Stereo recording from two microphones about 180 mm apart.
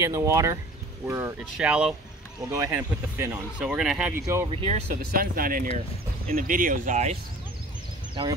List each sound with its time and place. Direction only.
0.0 s speech: 15° right (ahead or behind); by 4.3 s centre (ahead or behind)
4.5 s speech: 30° right (ahead or behind)
5.1 s speech: 55° right (ahead or behind)
8.1 s speech: 25° right (ahead or behind)